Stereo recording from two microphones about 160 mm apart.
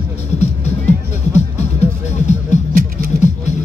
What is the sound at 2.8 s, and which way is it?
Music, 60° right (ahead or behind).